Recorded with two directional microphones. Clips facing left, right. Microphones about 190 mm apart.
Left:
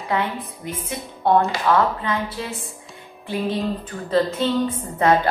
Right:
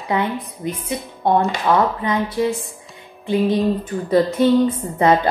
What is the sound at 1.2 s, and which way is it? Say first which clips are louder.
A woman's voice: right 1 dB; 15° right (ahead or behind).